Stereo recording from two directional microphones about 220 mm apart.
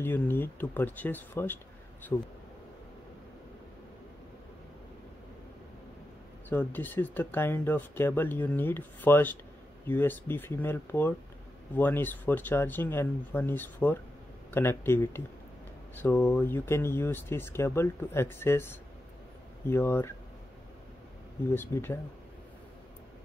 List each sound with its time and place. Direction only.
0.0 s speech: 10° left (ahead or behind)
6.5 s speech: 10° left (ahead or behind)
21.5 s speech: 10° left (ahead or behind)